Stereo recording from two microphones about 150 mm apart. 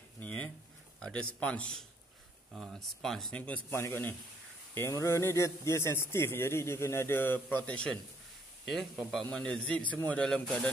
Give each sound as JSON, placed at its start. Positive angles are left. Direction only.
{"t": 0.2, "sound": "a sound", "side_deg": 10}
{"t": 0.9, "sound": "a man's voice", "side_deg": 5}
{"t": 9.3, "sound": "a man's voice", "side_deg": 5}